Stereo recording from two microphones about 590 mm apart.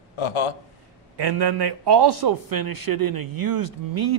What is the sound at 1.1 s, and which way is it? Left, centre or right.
A man's voice, right.